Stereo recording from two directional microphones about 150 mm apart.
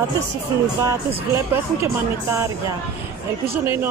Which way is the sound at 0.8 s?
20° right (ahead or behind).